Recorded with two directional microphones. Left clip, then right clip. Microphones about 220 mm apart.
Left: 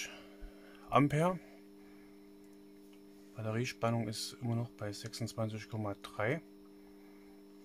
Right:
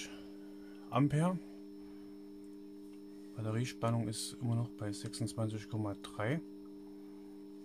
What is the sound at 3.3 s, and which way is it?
Speech, 5° left (ahead or behind).